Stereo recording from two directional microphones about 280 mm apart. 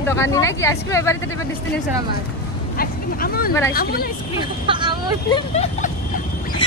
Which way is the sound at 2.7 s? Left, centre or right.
Left.